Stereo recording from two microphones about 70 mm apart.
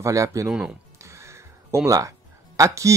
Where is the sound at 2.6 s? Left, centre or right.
Right.